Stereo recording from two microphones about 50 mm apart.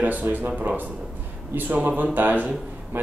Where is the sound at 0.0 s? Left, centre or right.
Right.